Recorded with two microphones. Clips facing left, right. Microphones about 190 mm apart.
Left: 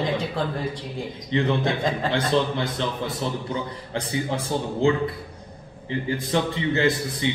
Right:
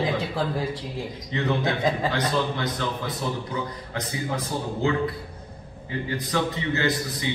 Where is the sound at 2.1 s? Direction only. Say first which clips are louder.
Left 3 dB; 30° left (ahead or behind).